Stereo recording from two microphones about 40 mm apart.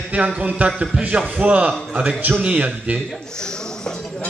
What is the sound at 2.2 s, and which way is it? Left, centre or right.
Speech, right.